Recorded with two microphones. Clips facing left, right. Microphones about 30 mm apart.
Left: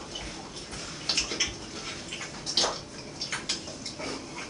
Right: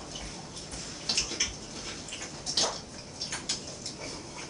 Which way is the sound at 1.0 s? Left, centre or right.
Left.